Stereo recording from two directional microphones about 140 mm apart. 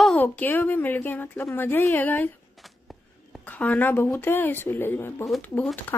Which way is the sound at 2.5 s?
Centre (ahead or behind).